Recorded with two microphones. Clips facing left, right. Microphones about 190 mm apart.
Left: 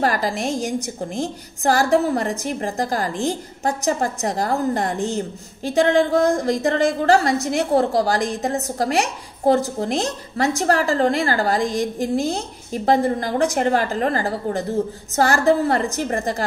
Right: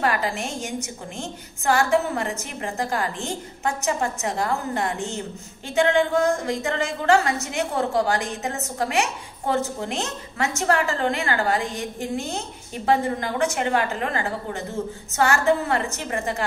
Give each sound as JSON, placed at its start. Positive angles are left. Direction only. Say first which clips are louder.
{"t": 0.0, "sound": "a woman's voice", "louder": "left 3 dB", "side_deg": 40}